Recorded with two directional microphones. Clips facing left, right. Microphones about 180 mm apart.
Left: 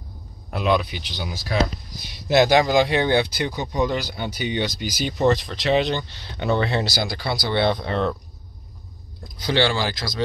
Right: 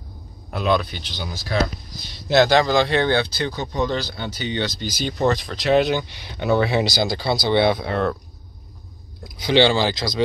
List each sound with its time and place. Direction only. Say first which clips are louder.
0.6 s speech: even; 5° left (ahead or behind); by 7.6 s 25° right (ahead or behind)
7.6 s speech: right 2 dB; 5° right (ahead or behind)
9.2 s speech: right 5 dB; 15° right (ahead or behind)